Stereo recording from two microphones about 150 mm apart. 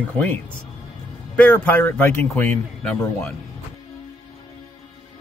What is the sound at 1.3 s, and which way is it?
A man's voice, 10° left (ahead or behind).